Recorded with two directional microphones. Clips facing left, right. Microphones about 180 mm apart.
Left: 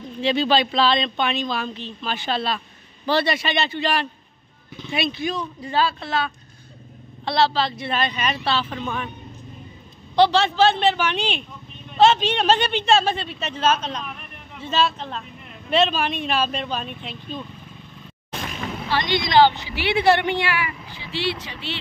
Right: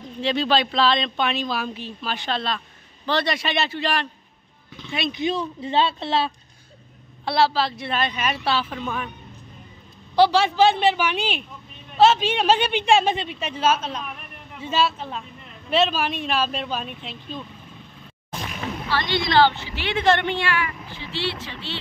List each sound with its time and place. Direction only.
0.2 s speech: centre (ahead or behind)
5.1 s speech: 25° right (ahead or behind)
7.2 s speech: 10° right (ahead or behind)
10.1 s a woman's voice: 10° right (ahead or behind)
18.9 s a woman's voice: 15° left (ahead or behind)